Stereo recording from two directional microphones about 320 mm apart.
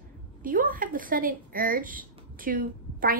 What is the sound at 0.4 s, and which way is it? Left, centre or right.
A woman's voice, right.